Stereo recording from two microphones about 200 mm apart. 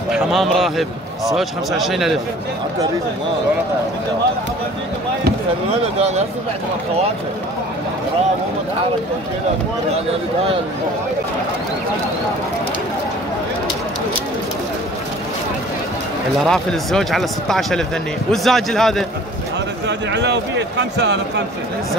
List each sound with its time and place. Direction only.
0.1 s a man's voice: centre (ahead or behind)
5.7 s speech: 30° right (ahead or behind)
16.4 s a man's voice: centre (ahead or behind)
19.9 s speech: 60° right (ahead or behind)